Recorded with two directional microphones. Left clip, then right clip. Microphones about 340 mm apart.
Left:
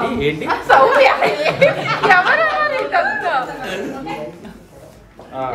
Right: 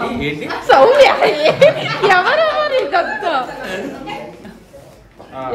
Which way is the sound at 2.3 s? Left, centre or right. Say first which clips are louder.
Right 1 dB; centre.